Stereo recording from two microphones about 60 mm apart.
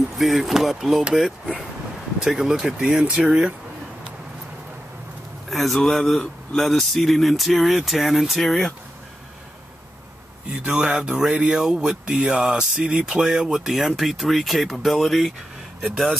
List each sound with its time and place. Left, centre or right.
0.2 s speech: centre
2.1 s speech: centre
5.5 s speech: centre
10.5 s speech: centre